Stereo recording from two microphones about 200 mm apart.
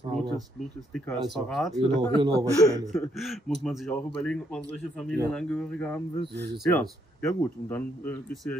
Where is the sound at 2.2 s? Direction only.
15° right (ahead or behind).